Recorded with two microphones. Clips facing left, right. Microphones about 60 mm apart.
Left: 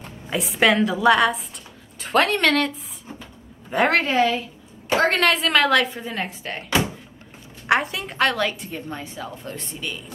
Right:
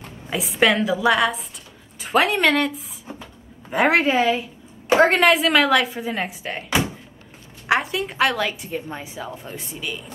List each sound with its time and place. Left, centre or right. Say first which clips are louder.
0.3 s a woman's voice: even; centre
5.2 s a woman's voice: right 2 dB; centre